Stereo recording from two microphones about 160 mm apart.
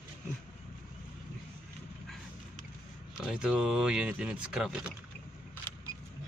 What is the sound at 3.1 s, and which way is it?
Speech, 5° right (ahead or behind).